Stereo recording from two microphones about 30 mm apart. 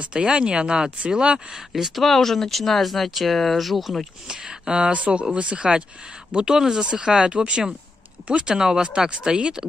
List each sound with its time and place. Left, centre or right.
0.1 s speech: right
2.0 s speech: centre
4.3 s speech: right
4.9 s speech: right
6.5 s speech: centre
6.8 s speech: right
8.5 s speech: right